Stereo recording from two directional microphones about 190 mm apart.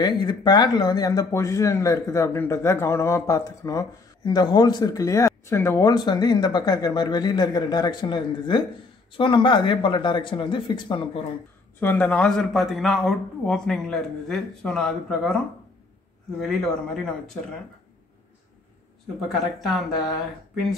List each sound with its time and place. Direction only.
0.0 s speech: 25° left (ahead or behind)
11.8 s speech: 10° left (ahead or behind)
19.2 s speech: centre (ahead or behind)